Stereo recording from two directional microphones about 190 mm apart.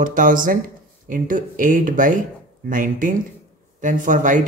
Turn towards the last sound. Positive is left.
turn(degrees=-40)  # may be behind; listen again after turning